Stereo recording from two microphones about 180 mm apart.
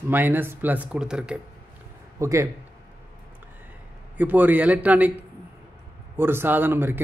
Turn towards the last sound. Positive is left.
turn(degrees=-10)  # may be behind; listen again after turning